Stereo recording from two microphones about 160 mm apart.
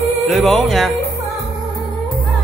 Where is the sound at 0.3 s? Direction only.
Centre (ahead or behind).